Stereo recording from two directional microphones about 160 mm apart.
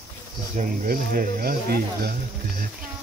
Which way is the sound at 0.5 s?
55° right (ahead or behind).